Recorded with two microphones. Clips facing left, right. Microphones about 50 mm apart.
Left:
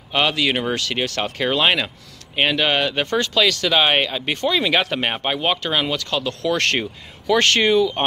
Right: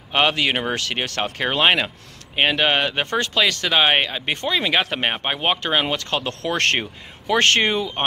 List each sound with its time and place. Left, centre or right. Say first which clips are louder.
0.1 s speech: even; right
5.4 s speech: right 2 dB; right